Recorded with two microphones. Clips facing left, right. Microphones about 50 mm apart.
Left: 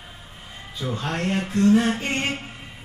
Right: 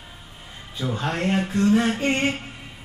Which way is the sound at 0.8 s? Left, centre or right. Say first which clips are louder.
Right 2 dB; centre.